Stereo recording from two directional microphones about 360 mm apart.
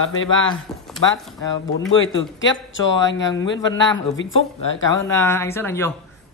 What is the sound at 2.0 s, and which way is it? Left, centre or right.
Speech, left.